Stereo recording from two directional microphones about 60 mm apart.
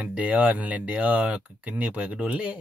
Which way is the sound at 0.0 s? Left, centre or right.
Right.